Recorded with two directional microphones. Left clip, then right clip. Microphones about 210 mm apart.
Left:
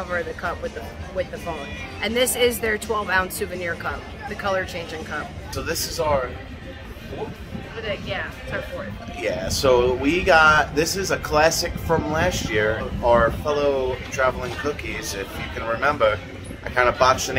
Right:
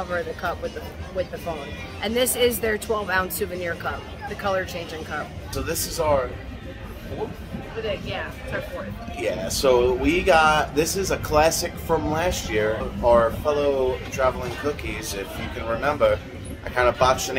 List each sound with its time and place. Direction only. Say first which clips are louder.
0.1 s speech: left 2 dB; 20° right (ahead or behind)
2.0 s speech: left 1 dB; 20° right (ahead or behind)
5.7 s speech: even; centre (ahead or behind)
9.2 s speech: left 1 dB; centre (ahead or behind)